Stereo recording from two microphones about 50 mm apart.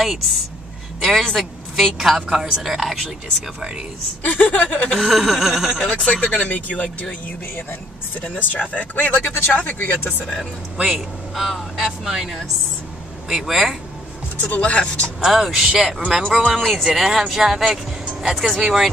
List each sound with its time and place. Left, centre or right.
0.0 s speech: centre
1.2 s a woman's voice: centre
4.2 s speech: left
5.0 s a woman's voice: centre
5.9 s speech: left
8.4 s speech: left
9.5 s speech: left
10.8 s a woman's voice: centre
14.4 s speech: left
15.1 s a woman's voice: centre
16.8 s a woman's voice: centre